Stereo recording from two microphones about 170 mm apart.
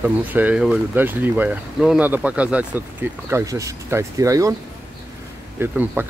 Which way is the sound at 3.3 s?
20° right (ahead or behind).